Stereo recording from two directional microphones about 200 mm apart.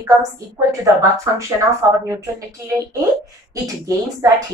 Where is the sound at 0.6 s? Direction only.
15° right (ahead or behind).